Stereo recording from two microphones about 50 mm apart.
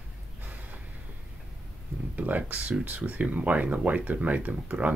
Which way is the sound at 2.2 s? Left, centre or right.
Right.